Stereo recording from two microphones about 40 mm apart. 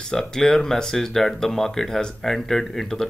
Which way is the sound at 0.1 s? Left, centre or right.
Centre.